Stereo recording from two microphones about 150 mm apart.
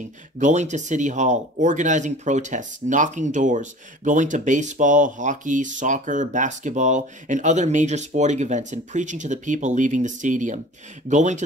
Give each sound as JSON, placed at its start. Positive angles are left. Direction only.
{"t": 0.4, "sound": "a man's voice", "side_deg": -55}